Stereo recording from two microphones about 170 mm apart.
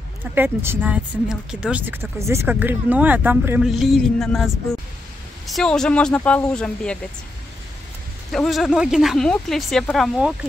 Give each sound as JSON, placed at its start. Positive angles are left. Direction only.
{"t": 0.2, "sound": "speech", "side_deg": -10}
{"t": 5.5, "sound": "speech", "side_deg": 5}
{"t": 8.3, "sound": "speech", "side_deg": 0}